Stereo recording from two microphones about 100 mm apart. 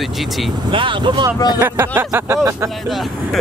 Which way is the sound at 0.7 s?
55° right (ahead or behind).